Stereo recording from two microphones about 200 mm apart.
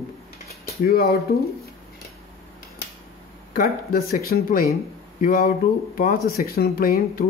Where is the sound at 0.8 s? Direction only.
50° left (ahead or behind).